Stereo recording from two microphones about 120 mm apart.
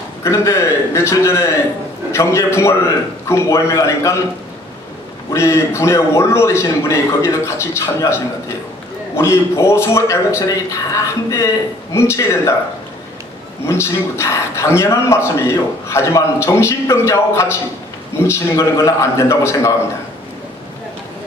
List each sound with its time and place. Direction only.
0.2 s a man's voice: 25° left (ahead or behind)
5.3 s a man's voice: 25° left (ahead or behind)
13.7 s a man's voice: 20° left (ahead or behind)